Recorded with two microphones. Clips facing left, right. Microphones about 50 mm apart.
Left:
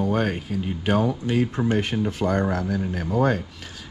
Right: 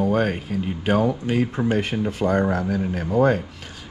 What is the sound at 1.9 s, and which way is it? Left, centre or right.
Speech, right.